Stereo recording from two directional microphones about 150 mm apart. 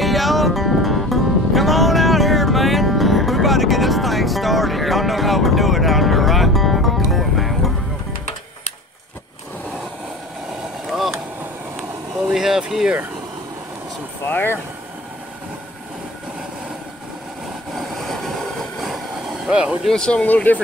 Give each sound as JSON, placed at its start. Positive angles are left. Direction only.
{"t": 0.0, "sound": "music", "side_deg": 0}
{"t": 10.9, "sound": "boat", "side_deg": 0}
{"t": 12.3, "sound": "vehicle", "side_deg": -5}
{"t": 14.3, "sound": "vehicle", "side_deg": 15}
{"t": 17.7, "sound": "train", "side_deg": 0}
{"t": 19.4, "sound": "speech", "side_deg": -5}
{"t": 19.9, "sound": "speech", "side_deg": 5}